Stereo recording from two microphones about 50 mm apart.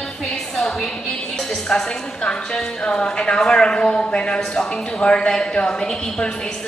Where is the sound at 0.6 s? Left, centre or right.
Centre.